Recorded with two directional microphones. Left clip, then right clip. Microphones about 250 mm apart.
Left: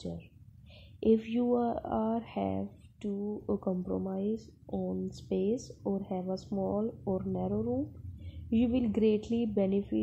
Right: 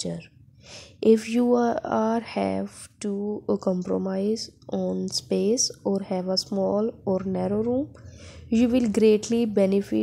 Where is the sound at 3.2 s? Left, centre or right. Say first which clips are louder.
Right 8 dB; right.